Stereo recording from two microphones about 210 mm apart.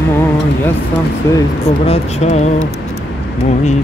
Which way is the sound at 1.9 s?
30° left (ahead or behind).